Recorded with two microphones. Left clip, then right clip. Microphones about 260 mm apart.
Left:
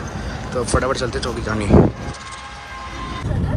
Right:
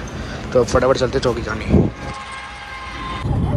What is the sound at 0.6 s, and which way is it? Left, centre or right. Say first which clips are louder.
Speech: right 5 dB; centre.